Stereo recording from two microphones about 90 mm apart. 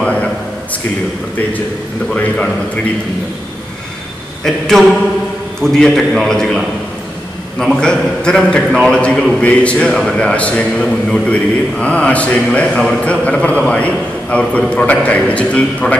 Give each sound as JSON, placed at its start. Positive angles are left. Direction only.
{"t": 2.1, "sound": "a man's voice", "side_deg": 15}
{"t": 5.6, "sound": "a man's voice", "side_deg": 5}